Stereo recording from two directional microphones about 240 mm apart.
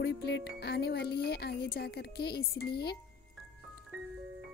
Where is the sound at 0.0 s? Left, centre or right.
Left.